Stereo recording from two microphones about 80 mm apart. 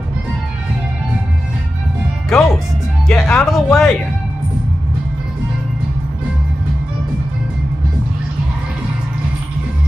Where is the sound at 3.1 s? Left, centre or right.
Centre.